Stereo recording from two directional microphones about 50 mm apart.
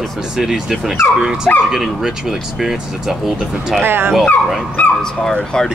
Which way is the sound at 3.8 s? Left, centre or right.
Right.